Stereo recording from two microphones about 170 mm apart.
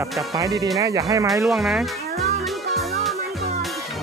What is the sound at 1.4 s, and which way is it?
Speech, centre (ahead or behind).